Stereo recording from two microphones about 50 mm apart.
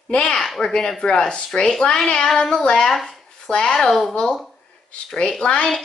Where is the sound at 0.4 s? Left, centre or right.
Centre.